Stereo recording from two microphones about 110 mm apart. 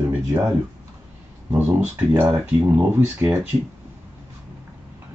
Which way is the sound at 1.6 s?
15° right (ahead or behind).